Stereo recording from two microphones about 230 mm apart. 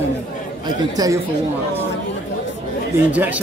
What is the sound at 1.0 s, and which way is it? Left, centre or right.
Speech, centre.